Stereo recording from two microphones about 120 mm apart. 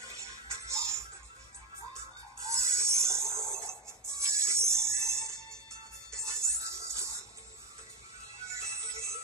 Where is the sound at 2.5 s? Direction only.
25° right (ahead or behind).